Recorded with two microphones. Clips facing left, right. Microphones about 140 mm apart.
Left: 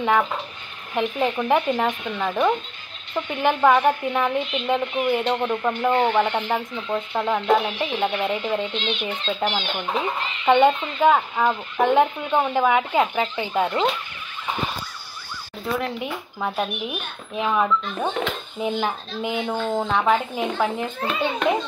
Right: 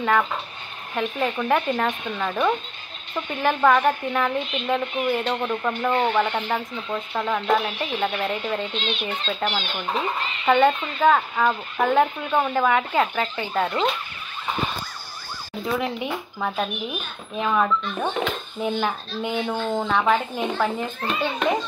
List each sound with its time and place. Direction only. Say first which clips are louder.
0.0 s speech: left 1 dB; 15° left (ahead or behind)
15.6 s speech: even; centre (ahead or behind)
18.8 s speech: even; 5° left (ahead or behind)